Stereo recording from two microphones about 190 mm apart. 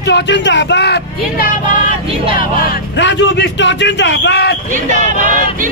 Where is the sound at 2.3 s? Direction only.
50° left (ahead or behind).